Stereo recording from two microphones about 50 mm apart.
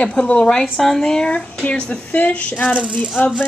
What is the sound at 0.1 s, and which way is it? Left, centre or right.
Speech, left.